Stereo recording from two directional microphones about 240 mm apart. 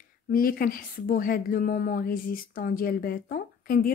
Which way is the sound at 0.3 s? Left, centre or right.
Left.